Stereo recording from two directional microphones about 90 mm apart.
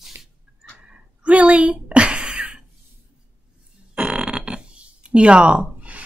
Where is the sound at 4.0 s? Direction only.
10° right (ahead or behind).